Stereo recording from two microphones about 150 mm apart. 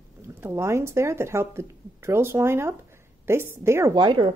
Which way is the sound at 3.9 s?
35° right (ahead or behind).